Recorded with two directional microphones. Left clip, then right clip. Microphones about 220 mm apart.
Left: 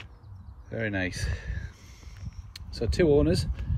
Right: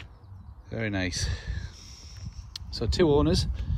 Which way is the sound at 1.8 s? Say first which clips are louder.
Right 6 dB; 20° left (ahead or behind).